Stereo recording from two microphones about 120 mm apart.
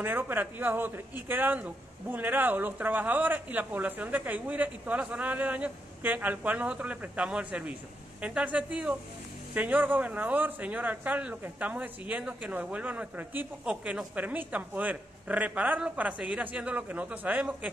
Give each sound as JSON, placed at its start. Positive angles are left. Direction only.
{"t": 0.0, "sound": "speech", "side_deg": -15}